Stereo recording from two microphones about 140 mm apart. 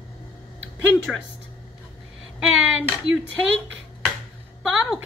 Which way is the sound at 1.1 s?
Centre (ahead or behind).